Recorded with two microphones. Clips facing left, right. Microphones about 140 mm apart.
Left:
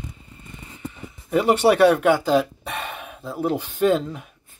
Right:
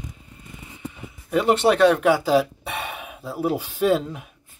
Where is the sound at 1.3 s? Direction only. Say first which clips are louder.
Left 1 dB; 5° left (ahead or behind).